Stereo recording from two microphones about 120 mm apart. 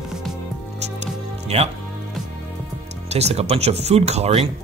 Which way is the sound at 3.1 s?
65° right (ahead or behind).